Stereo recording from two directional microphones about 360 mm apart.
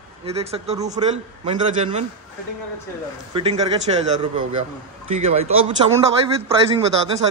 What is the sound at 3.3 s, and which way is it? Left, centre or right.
Speech, centre.